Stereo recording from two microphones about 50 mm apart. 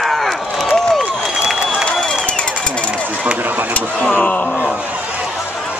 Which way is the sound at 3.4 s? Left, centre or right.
Right.